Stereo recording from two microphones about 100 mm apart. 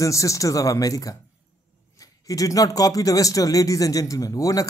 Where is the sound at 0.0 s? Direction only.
35° left (ahead or behind).